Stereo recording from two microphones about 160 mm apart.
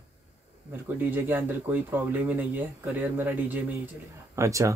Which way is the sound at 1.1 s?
15° right (ahead or behind).